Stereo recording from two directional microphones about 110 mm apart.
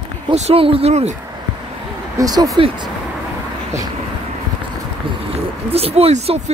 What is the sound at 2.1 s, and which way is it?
Speech, 35° right (ahead or behind).